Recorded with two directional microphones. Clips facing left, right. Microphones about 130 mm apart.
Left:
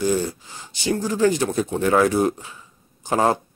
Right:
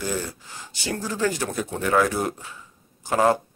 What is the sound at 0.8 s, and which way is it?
Speech, 20° left (ahead or behind).